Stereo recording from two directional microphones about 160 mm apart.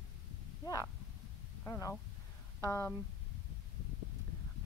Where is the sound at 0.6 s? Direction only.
20° left (ahead or behind).